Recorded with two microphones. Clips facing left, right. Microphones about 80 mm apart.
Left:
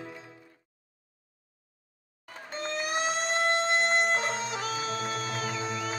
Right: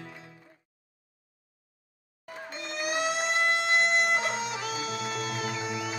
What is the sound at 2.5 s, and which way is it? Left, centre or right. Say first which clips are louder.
Vehicle: left 1 dB; left.